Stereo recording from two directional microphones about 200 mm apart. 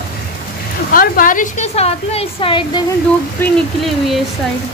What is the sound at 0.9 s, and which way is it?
A woman's voice, 45° left (ahead or behind).